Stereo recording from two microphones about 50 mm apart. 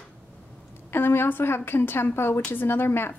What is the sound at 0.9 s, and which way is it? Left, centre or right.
A woman's voice, left.